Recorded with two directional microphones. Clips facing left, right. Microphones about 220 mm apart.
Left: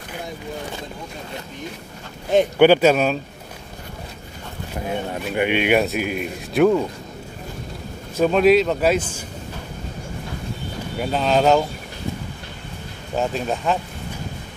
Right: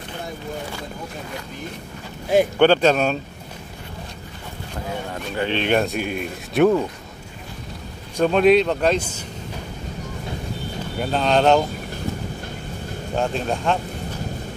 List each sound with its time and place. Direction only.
2.6 s speech: 10° left (ahead or behind)
4.8 s speech: 20° left (ahead or behind); by 6.8 s centre (ahead or behind)
8.2 s speech: centre (ahead or behind)
11.0 s speech: 5° left (ahead or behind)
13.1 s speech: 5° left (ahead or behind)